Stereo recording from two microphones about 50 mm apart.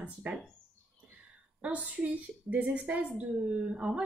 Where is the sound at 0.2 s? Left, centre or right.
Right.